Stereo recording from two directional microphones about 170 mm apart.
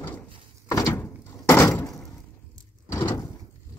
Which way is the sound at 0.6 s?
20° left (ahead or behind).